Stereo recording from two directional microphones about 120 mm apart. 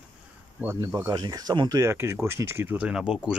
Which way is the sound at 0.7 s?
25° right (ahead or behind).